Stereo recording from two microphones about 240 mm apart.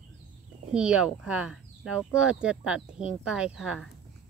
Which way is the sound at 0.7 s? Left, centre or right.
Centre.